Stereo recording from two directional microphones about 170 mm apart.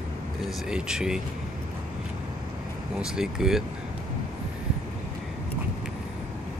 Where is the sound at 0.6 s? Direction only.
5° right (ahead or behind).